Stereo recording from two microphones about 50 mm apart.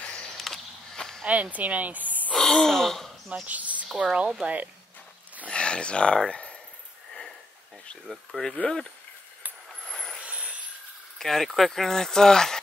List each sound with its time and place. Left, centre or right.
0.0 s a sound: centre
0.4 s a sound: centre
1.2 s speech: right
2.3 s gasp: centre
3.4 s speech: right
5.5 s speech: centre
6.3 s a sound: left
8.3 s speech: centre
9.8 s vehicle: centre
10.2 s vehicle: right
11.1 s speech: centre